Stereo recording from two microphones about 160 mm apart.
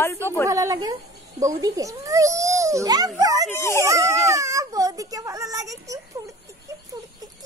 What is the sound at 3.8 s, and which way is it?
Whimper, 20° right (ahead or behind).